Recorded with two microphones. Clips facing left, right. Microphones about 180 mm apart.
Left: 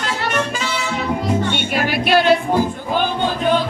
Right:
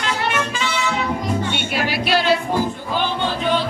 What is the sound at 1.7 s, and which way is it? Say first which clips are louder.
Music: left 4 dB; 50° left (ahead or behind).